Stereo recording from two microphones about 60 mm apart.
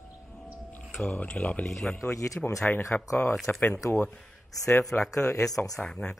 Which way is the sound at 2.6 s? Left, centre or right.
Left.